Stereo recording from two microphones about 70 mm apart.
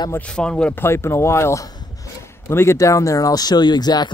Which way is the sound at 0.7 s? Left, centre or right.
Left.